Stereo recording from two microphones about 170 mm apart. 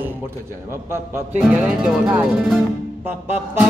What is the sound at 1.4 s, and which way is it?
Music, 5° right (ahead or behind).